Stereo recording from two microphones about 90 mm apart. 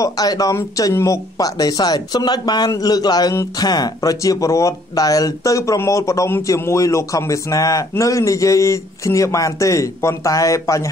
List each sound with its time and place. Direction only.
0.0 s speech: 45° left (ahead or behind)